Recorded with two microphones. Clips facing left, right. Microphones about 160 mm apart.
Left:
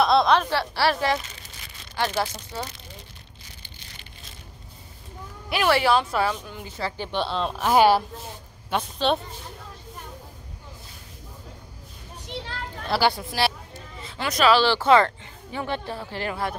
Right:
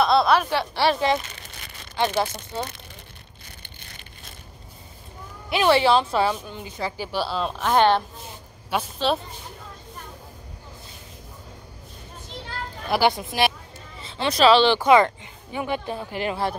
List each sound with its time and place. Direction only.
0.0 s speech: centre (ahead or behind); by 2.2 s 20° right (ahead or behind)
5.5 s a woman's voice: 25° right (ahead or behind)
7.1 s a woman's voice: 5° right (ahead or behind)
7.6 s a woman's voice: 5° left (ahead or behind)
8.6 s a woman's voice: 5° right (ahead or behind)
12.9 s a woman's voice: 20° right (ahead or behind)